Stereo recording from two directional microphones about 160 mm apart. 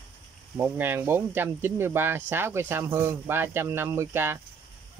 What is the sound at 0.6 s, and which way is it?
Speech, 15° right (ahead or behind).